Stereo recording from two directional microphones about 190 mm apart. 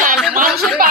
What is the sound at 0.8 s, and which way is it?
Speech, 45° right (ahead or behind).